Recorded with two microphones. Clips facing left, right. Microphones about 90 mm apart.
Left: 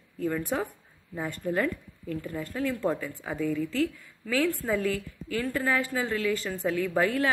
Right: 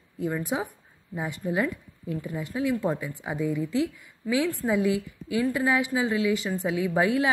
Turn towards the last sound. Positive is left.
turn(degrees=-15)  # may be behind; listen again after turning